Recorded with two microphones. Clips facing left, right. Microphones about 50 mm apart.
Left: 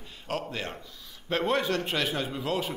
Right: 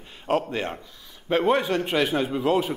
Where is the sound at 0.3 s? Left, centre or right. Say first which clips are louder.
Right 8 dB; right.